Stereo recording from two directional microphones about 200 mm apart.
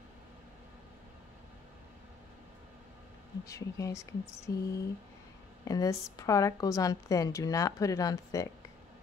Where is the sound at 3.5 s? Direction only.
15° left (ahead or behind).